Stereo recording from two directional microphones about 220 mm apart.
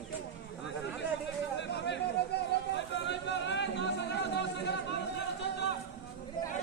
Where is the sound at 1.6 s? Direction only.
50° left (ahead or behind).